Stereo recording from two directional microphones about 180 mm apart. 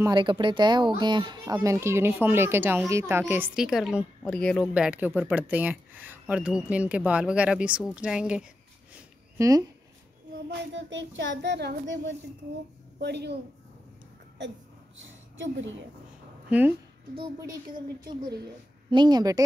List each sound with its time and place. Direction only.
0.0 s a woman's voice: 25° right (ahead or behind); by 8.5 s 5° right (ahead or behind)
9.4 s speech: 20° right (ahead or behind)
10.5 s speech: 85° right
13.0 s speech: 65° right (ahead or behind)
15.3 s a woman's voice: 90° right
16.4 s a woman's voice: 10° right (ahead or behind)
17.2 s speech: 25° right (ahead or behind)
18.9 s speech: 25° right (ahead or behind)